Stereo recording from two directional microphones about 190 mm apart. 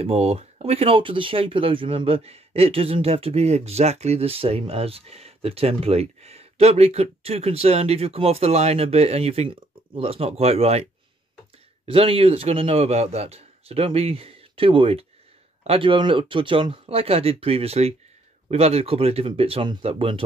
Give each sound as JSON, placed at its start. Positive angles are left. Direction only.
{"t": 0.0, "sound": "speech", "side_deg": -30}
{"t": 11.9, "sound": "speech", "side_deg": -30}